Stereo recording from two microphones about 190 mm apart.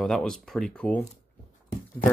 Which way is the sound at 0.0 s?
5° left (ahead or behind).